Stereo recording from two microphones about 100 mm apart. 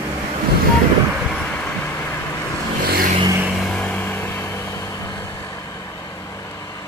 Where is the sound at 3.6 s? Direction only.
10° left (ahead or behind); by 5.1 s 30° left (ahead or behind).